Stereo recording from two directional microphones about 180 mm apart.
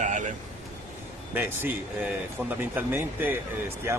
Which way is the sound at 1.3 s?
10° right (ahead or behind).